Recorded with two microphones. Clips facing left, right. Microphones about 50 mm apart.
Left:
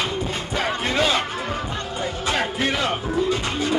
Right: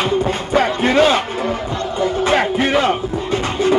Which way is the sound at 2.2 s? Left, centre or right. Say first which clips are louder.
Right 6 dB; right.